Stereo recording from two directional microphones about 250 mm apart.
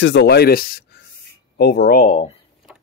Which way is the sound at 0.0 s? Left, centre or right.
Left.